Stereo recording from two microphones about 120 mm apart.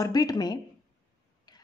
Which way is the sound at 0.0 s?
30° left (ahead or behind).